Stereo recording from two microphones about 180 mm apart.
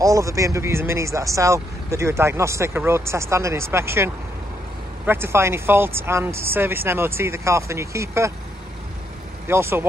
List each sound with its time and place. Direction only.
0.0 s speech: 15° right (ahead or behind)
9.5 s speech: 15° right (ahead or behind)